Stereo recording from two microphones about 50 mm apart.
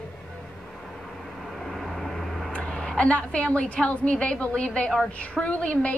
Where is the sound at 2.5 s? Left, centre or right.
Centre.